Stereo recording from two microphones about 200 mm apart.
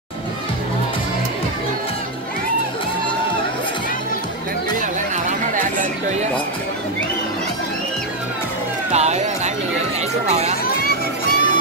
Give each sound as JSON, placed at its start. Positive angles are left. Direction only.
{"t": 5.1, "sound": "chatter", "side_deg": -40}
{"t": 8.9, "sound": "music", "side_deg": -35}
{"t": 10.2, "sound": "a sound", "side_deg": -30}
{"t": 10.8, "sound": "music", "side_deg": 50}